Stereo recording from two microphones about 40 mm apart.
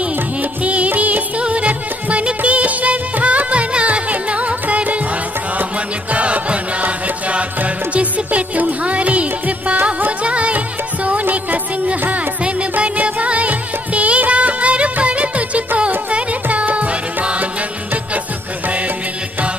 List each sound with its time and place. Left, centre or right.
0.4 s music: right
6.1 s music: right
11.1 s music: right
12.9 s music of bollywood: right
16.4 s music: right